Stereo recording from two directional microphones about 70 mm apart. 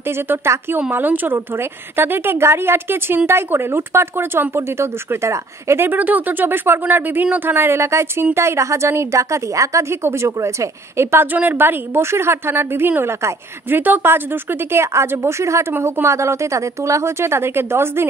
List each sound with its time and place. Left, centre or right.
0.0 s speech: right
5.9 s a woman's voice: right